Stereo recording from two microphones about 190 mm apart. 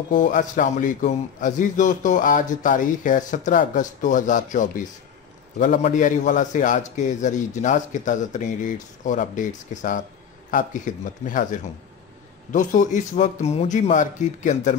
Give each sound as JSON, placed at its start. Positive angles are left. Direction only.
{"t": 0.1, "sound": "a man's voice", "side_deg": 45}